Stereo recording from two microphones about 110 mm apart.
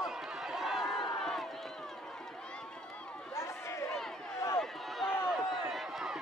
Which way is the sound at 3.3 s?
25° left (ahead or behind).